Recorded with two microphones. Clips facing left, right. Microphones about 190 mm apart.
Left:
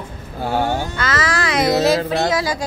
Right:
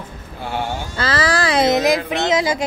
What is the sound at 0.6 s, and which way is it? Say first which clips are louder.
Speech: left 5 dB; 60° left (ahead or behind).